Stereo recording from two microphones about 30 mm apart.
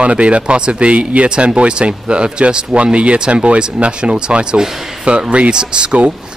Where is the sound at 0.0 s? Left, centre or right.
Right.